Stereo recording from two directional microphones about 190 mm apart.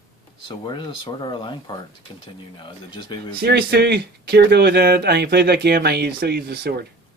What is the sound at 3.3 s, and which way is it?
Speech, 55° right (ahead or behind).